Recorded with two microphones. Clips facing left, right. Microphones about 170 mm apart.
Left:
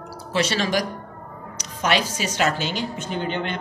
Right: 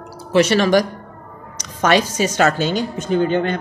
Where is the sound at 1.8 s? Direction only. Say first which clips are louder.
Right 7 dB; 45° right (ahead or behind).